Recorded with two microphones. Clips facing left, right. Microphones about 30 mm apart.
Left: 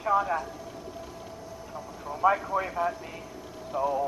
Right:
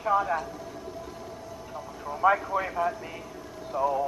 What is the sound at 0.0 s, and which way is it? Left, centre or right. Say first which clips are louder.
Speech: even; centre.